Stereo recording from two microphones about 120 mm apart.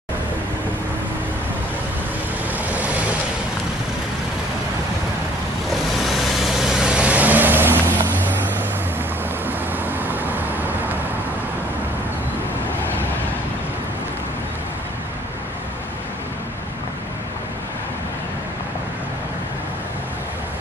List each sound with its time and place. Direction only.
2.7 s vehicle: 10° right (ahead or behind)
5.7 s vehicle: centre (ahead or behind); by 7.9 s 15° right (ahead or behind)
9.5 s vehicle: 15° right (ahead or behind)